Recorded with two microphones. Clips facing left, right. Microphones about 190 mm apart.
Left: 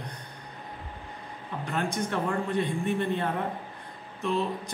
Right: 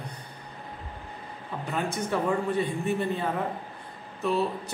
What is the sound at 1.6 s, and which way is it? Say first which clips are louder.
A man's voice: right 1 dB; 5° right (ahead or behind).